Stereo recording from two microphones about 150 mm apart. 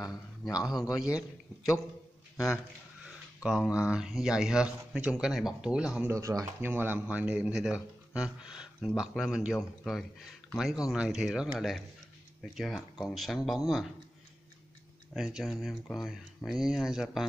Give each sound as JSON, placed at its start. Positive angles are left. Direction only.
{"t": 0.0, "sound": "a sound", "side_deg": 25}
{"t": 0.9, "sound": "speech", "side_deg": -5}
{"t": 2.3, "sound": "a man's voice", "side_deg": 20}
{"t": 3.0, "sound": "a sound", "side_deg": -5}
{"t": 3.9, "sound": "speech", "side_deg": -5}
{"t": 6.1, "sound": "speech", "side_deg": -20}
{"t": 15.1, "sound": "speech", "side_deg": -5}